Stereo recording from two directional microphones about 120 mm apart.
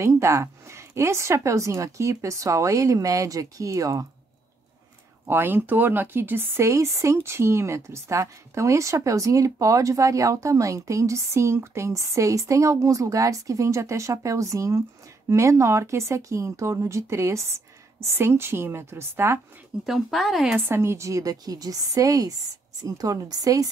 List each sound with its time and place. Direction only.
0.0 s speech: 25° right (ahead or behind)
5.2 s speech: 20° right (ahead or behind)
19.9 s speech: centre (ahead or behind)
20.5 s a woman's voice: 20° right (ahead or behind)